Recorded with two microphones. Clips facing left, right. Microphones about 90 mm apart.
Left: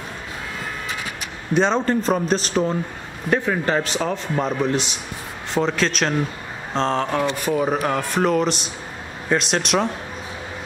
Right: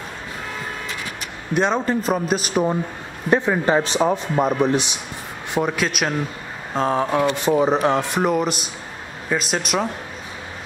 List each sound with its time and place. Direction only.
1.5 s speech: 5° right (ahead or behind)
7.4 s speech: 25° right (ahead or behind); by 9.8 s 5° right (ahead or behind)